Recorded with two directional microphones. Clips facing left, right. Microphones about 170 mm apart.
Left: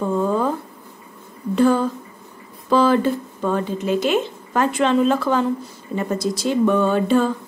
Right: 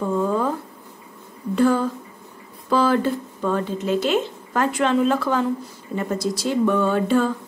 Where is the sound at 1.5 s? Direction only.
25° left (ahead or behind).